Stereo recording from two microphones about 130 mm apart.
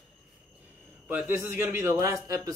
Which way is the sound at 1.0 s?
15° right (ahead or behind).